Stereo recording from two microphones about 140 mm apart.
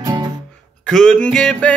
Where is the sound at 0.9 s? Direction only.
5° left (ahead or behind).